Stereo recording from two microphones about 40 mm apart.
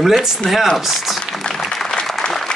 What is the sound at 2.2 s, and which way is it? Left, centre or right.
Applause, left.